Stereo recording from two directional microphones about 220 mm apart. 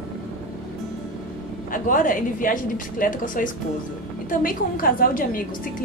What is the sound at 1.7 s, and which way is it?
A woman's voice, 40° left (ahead or behind).